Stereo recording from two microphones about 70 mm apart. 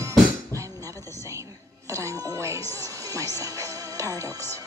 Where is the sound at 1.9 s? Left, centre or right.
Right.